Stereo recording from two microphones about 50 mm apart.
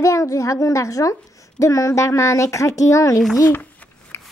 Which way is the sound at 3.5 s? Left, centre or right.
Left.